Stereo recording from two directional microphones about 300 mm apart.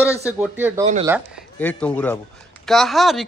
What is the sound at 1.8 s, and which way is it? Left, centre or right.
Speech, centre.